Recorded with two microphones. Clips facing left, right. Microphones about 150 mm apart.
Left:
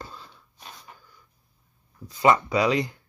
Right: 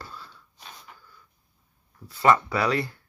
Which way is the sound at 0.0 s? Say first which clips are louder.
Left 1 dB; 20° left (ahead or behind).